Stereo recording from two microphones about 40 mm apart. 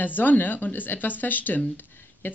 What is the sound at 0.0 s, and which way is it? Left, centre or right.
Speech, left.